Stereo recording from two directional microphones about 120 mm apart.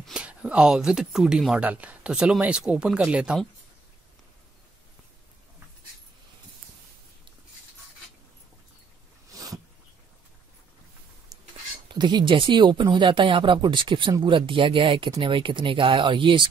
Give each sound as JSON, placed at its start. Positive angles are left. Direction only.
{"t": 0.0, "sound": "speech", "side_deg": -10}
{"t": 9.3, "sound": "a sound", "side_deg": -30}
{"t": 11.3, "sound": "dishes", "side_deg": -30}
{"t": 11.9, "sound": "speech", "side_deg": -40}